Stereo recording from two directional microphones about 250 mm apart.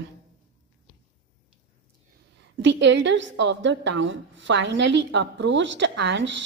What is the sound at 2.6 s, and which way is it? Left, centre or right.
A woman's voice, right.